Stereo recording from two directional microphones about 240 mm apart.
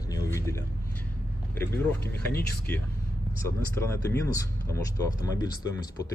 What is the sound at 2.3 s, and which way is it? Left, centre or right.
Speech, left.